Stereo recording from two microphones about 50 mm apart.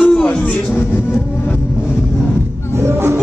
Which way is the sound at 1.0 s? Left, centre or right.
Left.